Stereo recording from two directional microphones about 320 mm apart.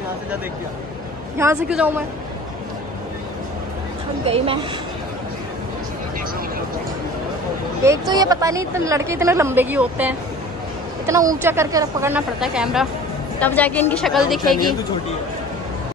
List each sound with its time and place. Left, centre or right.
1.4 s speech: centre
4.3 s speech: centre
7.8 s a woman's voice: centre